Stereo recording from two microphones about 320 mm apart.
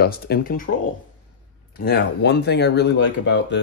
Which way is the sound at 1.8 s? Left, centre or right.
Left.